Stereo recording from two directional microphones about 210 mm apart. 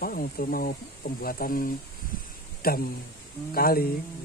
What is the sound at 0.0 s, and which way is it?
Speech, 45° left (ahead or behind).